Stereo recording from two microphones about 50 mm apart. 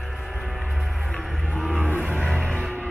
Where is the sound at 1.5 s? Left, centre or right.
Centre.